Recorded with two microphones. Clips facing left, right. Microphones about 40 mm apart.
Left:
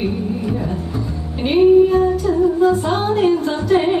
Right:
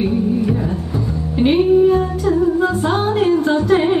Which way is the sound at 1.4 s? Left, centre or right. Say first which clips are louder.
Left 1 dB; centre.